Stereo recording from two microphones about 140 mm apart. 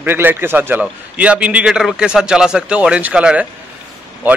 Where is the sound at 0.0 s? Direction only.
15° right (ahead or behind).